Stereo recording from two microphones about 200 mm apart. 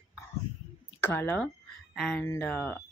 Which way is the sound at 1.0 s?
10° left (ahead or behind).